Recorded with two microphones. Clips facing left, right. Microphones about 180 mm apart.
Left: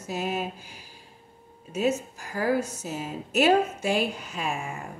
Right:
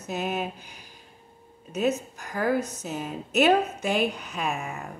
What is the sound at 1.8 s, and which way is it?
Speech, 60° right (ahead or behind).